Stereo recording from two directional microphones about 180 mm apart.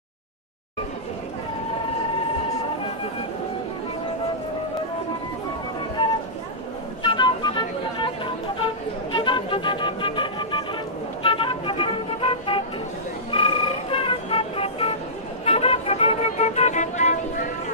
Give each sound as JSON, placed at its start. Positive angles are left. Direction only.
{"t": 6.0, "sound": "a sound", "side_deg": 25}
{"t": 7.0, "sound": "music", "side_deg": 25}
{"t": 9.1, "sound": "music", "side_deg": 25}
{"t": 11.2, "sound": "vehicle", "side_deg": 30}
{"t": 15.4, "sound": "music", "side_deg": 35}